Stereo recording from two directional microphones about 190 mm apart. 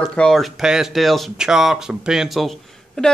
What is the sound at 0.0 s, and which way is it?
Speech, 5° left (ahead or behind).